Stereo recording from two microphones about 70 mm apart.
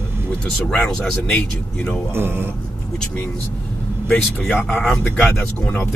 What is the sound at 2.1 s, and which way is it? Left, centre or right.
Speech, right.